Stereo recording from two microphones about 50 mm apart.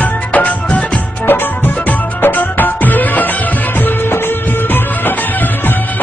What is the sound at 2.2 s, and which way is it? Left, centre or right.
Music, left.